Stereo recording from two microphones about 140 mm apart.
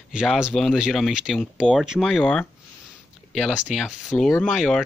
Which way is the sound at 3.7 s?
Centre (ahead or behind).